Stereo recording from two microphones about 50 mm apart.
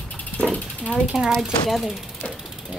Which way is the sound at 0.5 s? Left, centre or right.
Left.